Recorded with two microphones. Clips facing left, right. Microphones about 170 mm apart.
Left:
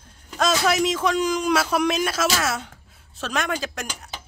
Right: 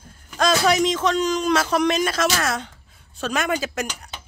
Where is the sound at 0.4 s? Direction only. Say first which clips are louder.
Right 2 dB; centre (ahead or behind).